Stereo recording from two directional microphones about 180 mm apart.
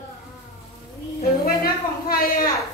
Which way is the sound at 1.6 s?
55° left (ahead or behind).